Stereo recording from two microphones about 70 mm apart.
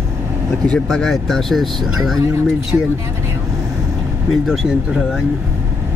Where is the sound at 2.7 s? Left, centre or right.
Right.